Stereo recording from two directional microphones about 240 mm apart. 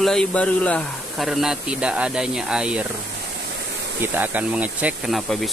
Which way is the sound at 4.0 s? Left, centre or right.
Centre.